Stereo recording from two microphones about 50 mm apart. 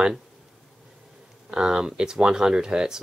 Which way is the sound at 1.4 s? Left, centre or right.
Centre.